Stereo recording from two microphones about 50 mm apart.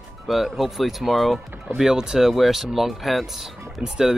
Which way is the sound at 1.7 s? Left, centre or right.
Centre.